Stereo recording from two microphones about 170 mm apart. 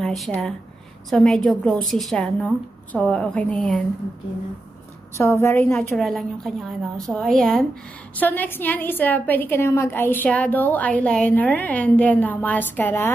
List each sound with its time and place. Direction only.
0.0 s a woman's voice: centre (ahead or behind)
5.1 s a woman's voice: 15° left (ahead or behind)
5.8 s a woman's voice: centre (ahead or behind)